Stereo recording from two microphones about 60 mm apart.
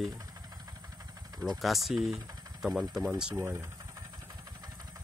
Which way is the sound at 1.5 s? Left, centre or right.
Centre.